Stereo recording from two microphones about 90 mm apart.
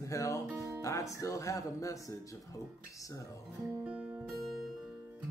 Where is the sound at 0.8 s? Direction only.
40° left (ahead or behind).